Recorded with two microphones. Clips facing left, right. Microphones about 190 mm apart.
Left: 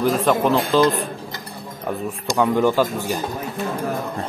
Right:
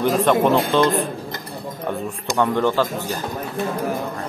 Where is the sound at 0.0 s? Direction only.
Centre (ahead or behind).